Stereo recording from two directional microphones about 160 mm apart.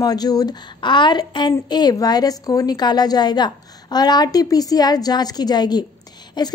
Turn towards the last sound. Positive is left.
turn(degrees=25)  # may be behind; listen again after turning